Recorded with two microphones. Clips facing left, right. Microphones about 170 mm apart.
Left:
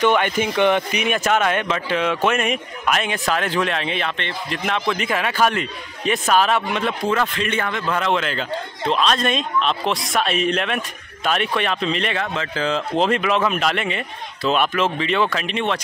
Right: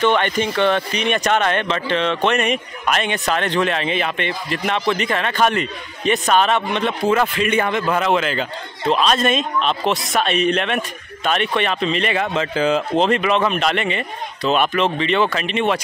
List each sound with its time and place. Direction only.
0.0 s a man's voice: 10° left (ahead or behind); by 7.6 s 10° right (ahead or behind)
7.6 s a man's voice: 20° right (ahead or behind)
7.9 s a man's voice: 5° right (ahead or behind)
12.2 s speech: 15° right (ahead or behind)
12.9 s a man's voice: centre (ahead or behind)